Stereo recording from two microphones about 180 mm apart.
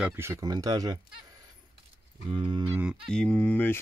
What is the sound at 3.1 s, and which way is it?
Speech, 5° left (ahead or behind).